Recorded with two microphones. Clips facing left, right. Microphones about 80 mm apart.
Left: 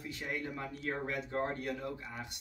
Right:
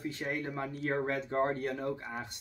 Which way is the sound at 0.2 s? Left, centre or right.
Right.